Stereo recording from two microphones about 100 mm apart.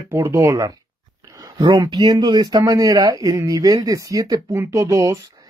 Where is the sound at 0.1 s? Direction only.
30° right (ahead or behind); by 2.6 s 45° right (ahead or behind).